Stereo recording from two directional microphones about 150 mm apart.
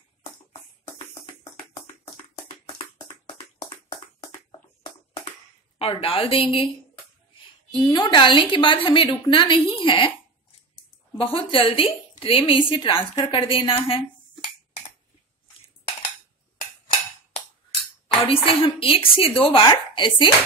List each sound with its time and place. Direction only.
0.2 s music: 45° left (ahead or behind)
5.8 s a woman's voice: 40° left (ahead or behind)
7.7 s a woman's voice: 25° left (ahead or behind)
11.5 s a woman's voice: 35° left (ahead or behind)
18.0 s a woman's voice: 35° left (ahead or behind)